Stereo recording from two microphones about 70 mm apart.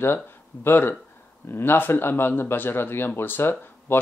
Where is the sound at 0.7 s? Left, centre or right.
Left.